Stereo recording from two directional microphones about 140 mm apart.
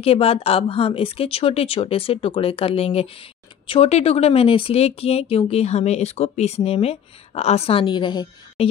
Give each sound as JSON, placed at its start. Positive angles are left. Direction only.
{"t": 0.0, "sound": "speech", "side_deg": 45}
{"t": 8.6, "sound": "speech", "side_deg": 45}